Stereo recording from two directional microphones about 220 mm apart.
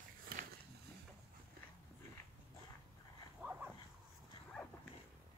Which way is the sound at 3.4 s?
5° right (ahead or behind).